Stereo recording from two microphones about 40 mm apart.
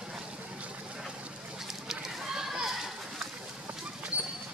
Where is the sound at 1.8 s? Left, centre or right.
Centre.